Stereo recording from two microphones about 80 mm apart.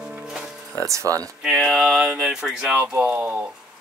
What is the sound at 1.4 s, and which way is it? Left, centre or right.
Speech, centre.